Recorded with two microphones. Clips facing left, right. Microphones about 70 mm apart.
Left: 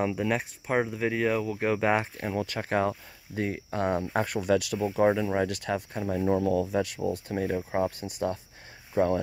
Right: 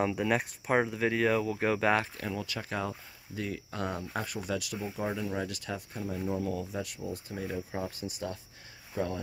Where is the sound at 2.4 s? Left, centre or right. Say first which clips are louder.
Left 10 dB; left.